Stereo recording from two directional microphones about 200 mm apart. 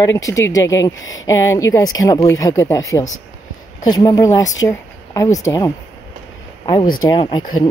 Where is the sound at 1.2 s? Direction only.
15° left (ahead or behind).